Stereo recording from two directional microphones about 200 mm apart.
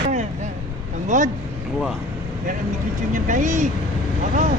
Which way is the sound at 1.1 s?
40° right (ahead or behind).